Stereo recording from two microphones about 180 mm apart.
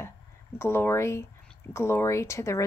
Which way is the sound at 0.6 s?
15° left (ahead or behind).